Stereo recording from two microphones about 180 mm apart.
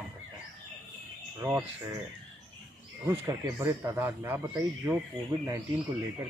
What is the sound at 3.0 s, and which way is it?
Speech, 20° right (ahead or behind).